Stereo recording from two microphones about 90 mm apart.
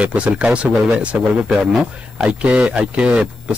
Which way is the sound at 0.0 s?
15° right (ahead or behind).